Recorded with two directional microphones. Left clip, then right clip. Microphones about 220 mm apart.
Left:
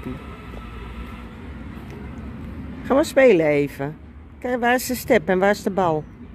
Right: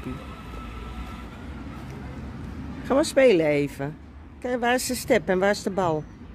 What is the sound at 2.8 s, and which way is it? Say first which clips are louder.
A woman's voice: left 4 dB; 10° left (ahead or behind).